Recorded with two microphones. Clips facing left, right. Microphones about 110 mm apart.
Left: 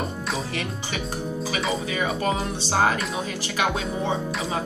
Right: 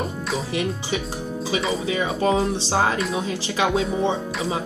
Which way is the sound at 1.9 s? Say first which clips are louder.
Right 4 dB; 25° right (ahead or behind).